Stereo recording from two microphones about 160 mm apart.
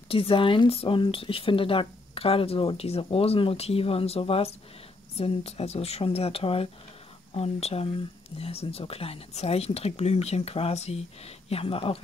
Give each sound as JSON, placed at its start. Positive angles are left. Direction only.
{"t": 0.1, "sound": "speech", "side_deg": 35}